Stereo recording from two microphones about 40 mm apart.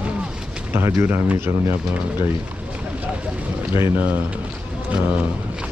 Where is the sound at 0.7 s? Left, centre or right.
Right.